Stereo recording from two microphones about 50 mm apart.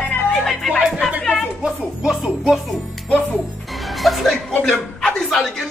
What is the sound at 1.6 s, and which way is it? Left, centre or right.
Speech, centre.